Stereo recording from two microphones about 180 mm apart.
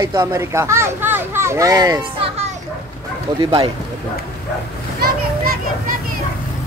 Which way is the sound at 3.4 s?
30° right (ahead or behind).